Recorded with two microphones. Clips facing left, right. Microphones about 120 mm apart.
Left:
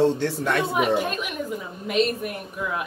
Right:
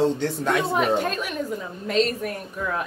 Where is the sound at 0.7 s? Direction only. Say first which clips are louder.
Even; 10° left (ahead or behind).